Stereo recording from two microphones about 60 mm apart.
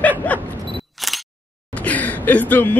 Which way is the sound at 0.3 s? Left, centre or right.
Left.